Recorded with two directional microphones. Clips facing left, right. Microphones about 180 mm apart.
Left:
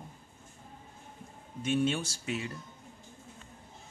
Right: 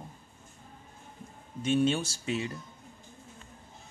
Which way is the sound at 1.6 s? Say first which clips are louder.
Right 3 dB; 30° right (ahead or behind).